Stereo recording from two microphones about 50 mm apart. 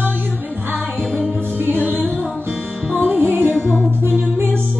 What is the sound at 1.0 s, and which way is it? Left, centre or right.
Music, left.